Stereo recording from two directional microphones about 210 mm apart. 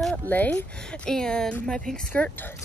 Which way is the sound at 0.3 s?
10° left (ahead or behind).